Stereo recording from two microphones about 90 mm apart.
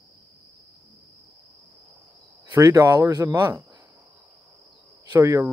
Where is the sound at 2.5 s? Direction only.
40° right (ahead or behind).